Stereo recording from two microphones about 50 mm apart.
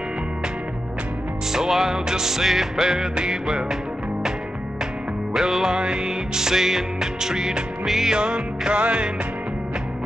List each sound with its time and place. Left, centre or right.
1.5 s music: centre
5.3 s music: centre
8.2 s music: centre